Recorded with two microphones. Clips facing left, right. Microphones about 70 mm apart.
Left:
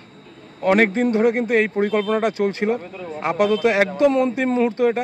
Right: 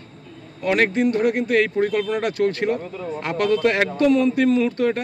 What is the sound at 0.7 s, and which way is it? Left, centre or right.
Speech, left.